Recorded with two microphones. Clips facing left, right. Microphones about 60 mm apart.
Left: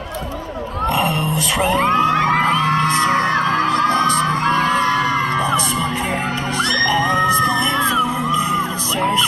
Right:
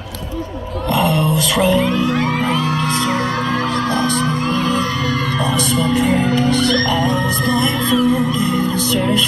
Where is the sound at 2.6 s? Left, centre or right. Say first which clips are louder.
Left 3 dB; left; by 9.0 s centre.